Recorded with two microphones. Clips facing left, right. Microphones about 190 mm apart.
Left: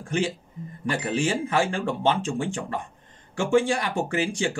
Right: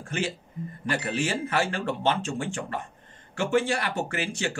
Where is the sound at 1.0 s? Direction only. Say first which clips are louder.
Left 5 dB; 15° left (ahead or behind).